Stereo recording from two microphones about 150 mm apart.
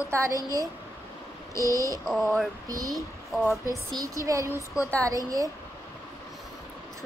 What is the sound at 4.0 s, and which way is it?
Child singing, 20° right (ahead or behind).